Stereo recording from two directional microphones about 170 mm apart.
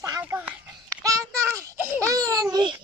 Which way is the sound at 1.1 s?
20° right (ahead or behind).